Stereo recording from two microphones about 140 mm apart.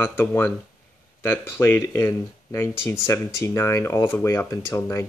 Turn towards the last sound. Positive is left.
turn(degrees=20)  # may be behind; listen again after turning